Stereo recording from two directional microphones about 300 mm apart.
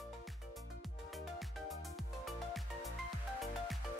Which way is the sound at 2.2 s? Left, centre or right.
Centre.